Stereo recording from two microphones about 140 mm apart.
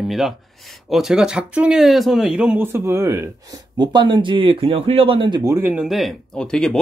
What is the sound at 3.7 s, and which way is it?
Speech, 30° right (ahead or behind).